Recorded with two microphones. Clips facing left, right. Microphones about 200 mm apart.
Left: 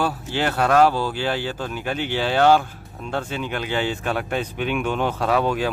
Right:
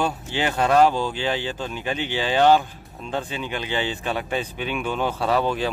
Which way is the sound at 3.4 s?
10° left (ahead or behind).